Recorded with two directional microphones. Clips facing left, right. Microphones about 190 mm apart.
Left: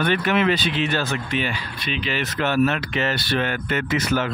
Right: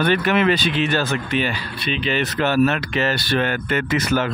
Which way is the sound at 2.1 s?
35° right (ahead or behind).